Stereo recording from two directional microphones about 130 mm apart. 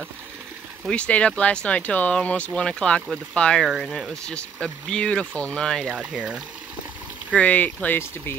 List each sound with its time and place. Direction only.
0.8 s speech: 10° left (ahead or behind)
5.9 s speech: 10° right (ahead or behind)
7.3 s speech: 10° left (ahead or behind)